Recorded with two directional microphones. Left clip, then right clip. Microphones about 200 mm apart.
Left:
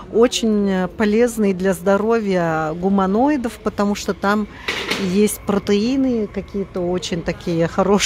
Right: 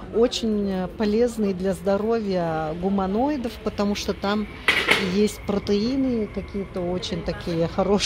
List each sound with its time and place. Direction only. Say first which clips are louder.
0.2 s speech: left 6 dB; 35° left (ahead or behind)